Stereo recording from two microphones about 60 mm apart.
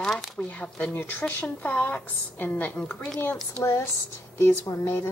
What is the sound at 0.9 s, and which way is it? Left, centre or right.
A woman's voice, left.